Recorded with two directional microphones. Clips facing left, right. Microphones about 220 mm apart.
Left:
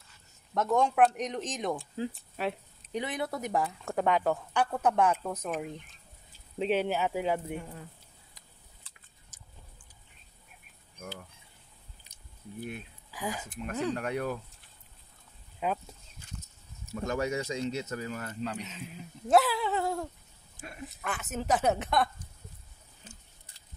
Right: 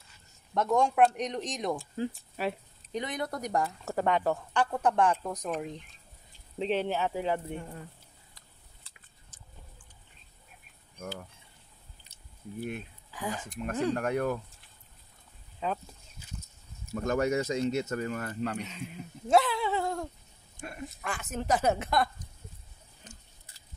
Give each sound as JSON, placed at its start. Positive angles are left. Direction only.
{"t": 0.6, "sound": "speech", "side_deg": 0}
{"t": 13.1, "sound": "speech", "side_deg": 10}
{"t": 13.9, "sound": "speech", "side_deg": -50}
{"t": 15.6, "sound": "speech", "side_deg": 10}
{"t": 16.9, "sound": "speech", "side_deg": -50}
{"t": 18.6, "sound": "speech", "side_deg": 0}